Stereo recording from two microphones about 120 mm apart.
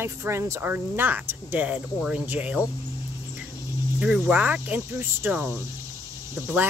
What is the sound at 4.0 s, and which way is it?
Speech, 10° right (ahead or behind).